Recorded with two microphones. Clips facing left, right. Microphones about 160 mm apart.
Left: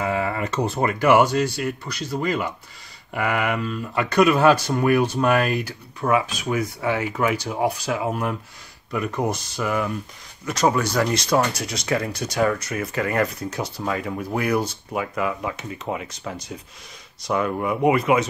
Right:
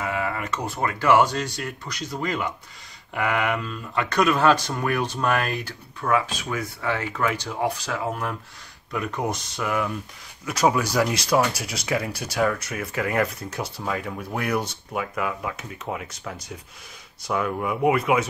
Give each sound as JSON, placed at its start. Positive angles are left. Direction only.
{"t": 0.0, "sound": "speech", "side_deg": 30}
{"t": 8.9, "sound": "speech", "side_deg": 0}